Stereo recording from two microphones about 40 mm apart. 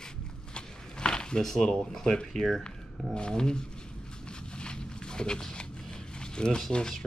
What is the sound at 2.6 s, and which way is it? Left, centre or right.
Speech, left.